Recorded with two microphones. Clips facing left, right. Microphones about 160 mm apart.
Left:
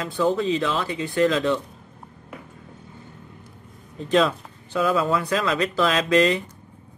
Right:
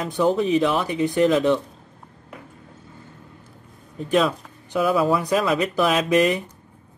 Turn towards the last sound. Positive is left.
turn(degrees=-15)  # may be behind; listen again after turning